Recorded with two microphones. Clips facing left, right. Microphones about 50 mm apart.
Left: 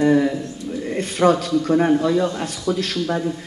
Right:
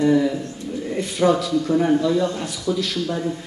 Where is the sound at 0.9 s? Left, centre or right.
Left.